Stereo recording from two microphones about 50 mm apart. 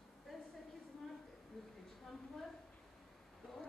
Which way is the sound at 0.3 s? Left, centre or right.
Centre.